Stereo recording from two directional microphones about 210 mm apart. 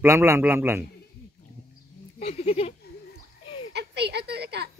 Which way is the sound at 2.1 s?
30° left (ahead or behind).